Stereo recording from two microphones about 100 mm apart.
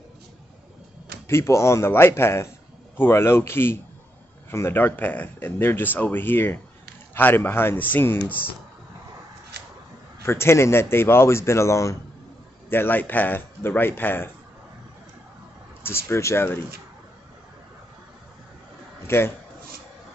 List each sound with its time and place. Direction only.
1.2 s speech: 30° left (ahead or behind)
10.2 s speech: 25° left (ahead or behind)
15.8 s speech: 25° left (ahead or behind)
19.0 s speech: 25° left (ahead or behind)